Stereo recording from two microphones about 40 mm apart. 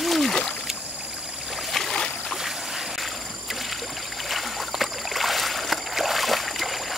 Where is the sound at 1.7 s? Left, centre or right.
Centre.